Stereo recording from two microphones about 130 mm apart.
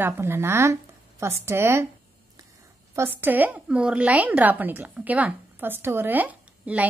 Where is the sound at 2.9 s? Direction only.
20° right (ahead or behind).